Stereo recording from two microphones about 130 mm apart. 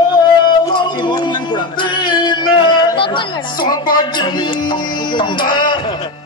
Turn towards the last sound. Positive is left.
turn(degrees=40)  # may be behind; listen again after turning